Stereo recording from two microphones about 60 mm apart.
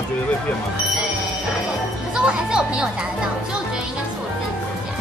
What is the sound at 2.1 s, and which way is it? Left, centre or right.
Music, centre.